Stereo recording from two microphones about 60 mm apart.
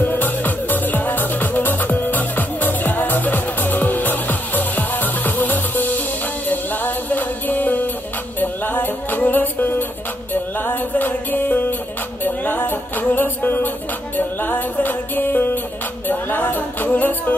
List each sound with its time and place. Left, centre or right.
0.0 s music: left
16.1 s a capella: left